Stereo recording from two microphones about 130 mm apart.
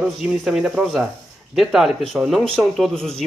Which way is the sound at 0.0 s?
5° right (ahead or behind).